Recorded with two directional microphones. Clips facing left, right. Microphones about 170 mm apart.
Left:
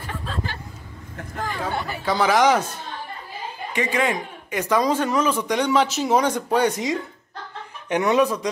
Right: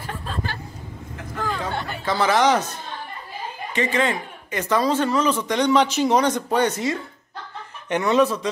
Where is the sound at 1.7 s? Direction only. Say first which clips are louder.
Left 1 dB; 5° left (ahead or behind).